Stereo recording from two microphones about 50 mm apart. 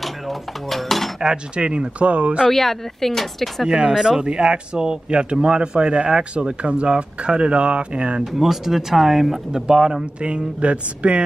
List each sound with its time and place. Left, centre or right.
0.0 s a sound: centre
1.2 s speech: centre
2.5 s speech: centre
3.6 s speech: centre
8.2 s speech: centre
10.2 s speech: right